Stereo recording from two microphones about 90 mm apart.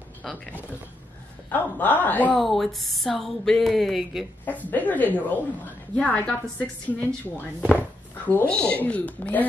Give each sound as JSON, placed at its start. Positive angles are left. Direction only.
{"t": 0.2, "sound": "speech", "side_deg": 5}
{"t": 1.5, "sound": "a woman's voice", "side_deg": 20}
{"t": 2.3, "sound": "speech", "side_deg": 0}
{"t": 4.5, "sound": "a woman's voice", "side_deg": 20}